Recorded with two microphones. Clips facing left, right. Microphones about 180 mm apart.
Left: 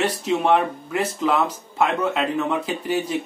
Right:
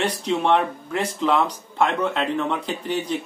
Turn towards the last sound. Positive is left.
turn(degrees=5)  # may be behind; listen again after turning